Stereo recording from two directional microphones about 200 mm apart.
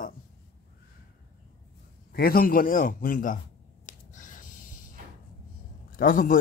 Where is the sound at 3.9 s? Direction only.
40° left (ahead or behind).